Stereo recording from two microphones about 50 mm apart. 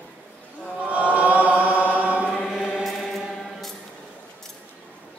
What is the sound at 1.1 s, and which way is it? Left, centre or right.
Chant, right.